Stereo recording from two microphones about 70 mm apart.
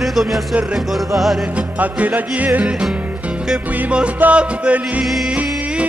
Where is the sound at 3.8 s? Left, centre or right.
Right.